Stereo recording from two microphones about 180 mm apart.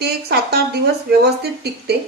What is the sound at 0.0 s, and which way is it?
A woman's voice, 65° right (ahead or behind).